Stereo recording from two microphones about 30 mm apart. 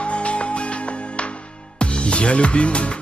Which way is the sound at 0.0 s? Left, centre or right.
Left.